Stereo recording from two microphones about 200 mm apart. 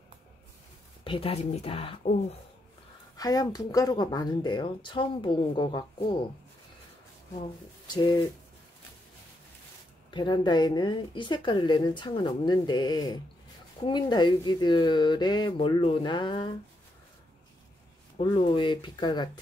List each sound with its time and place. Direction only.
1.0 s a woman's voice: 25° left (ahead or behind)
3.2 s a woman's voice: 20° left (ahead or behind)
7.8 s pigeon: 20° left (ahead or behind)
10.1 s a woman's voice: 20° left (ahead or behind)
18.2 s a woman's voice: 25° left (ahead or behind)